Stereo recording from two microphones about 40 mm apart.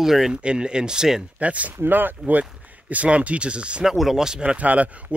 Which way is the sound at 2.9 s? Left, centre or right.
Right.